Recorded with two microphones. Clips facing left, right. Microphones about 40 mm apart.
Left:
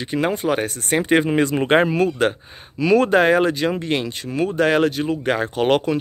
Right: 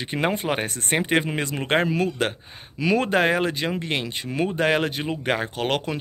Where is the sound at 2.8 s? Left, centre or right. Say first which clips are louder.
Left 5 dB; centre.